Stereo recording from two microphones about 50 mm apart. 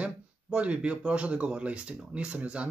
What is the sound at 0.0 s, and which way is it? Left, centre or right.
Speech, right.